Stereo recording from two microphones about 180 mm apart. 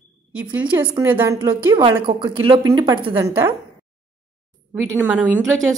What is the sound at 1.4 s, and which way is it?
A woman's voice, 25° right (ahead or behind).